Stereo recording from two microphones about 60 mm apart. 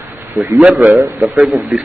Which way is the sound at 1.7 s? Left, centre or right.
Centre.